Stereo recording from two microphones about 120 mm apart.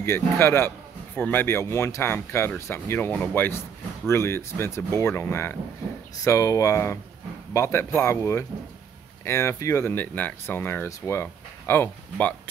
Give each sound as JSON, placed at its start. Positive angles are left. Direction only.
{"t": 0.0, "sound": "a man's voice", "side_deg": 20}